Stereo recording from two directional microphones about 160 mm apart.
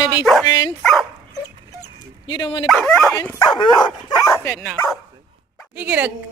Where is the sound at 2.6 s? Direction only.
5° left (ahead or behind).